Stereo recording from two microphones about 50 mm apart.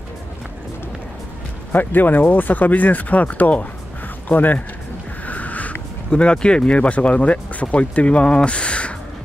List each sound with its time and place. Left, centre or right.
1.7 s speech: left
5.2 s a sound: left
6.0 s speech: centre